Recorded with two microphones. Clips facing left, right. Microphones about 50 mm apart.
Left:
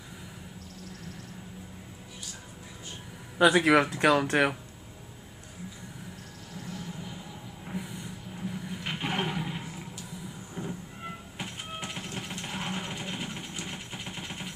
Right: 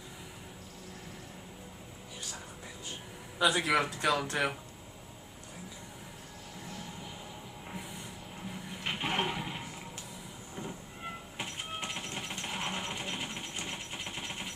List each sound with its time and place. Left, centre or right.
3.3 s speech: left
6.6 s a sound: centre
7.6 s toilet flush: centre
10.5 s vehicle: centre
11.4 s a sound: centre
13.7 s engine: centre